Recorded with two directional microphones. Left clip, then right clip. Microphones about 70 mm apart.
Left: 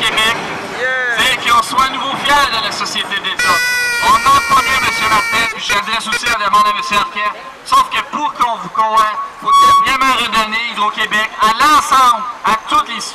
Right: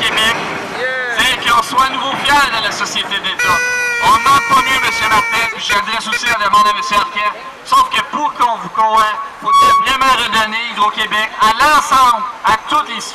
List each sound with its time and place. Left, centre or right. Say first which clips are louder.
0.0 s vehicle: even; left
0.8 s a sound: left 1 dB; left
2.2 s a man's voice: even; left
9.8 s a man's voice: right 1 dB; centre